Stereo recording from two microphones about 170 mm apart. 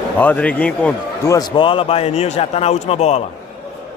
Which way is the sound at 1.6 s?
30° left (ahead or behind).